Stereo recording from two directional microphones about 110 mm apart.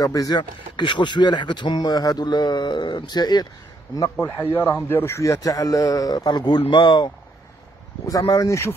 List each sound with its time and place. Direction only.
0.0 s speech: 35° left (ahead or behind)
4.4 s speech: 20° left (ahead or behind); by 7.1 s 45° left (ahead or behind)
8.1 s speech: 35° left (ahead or behind)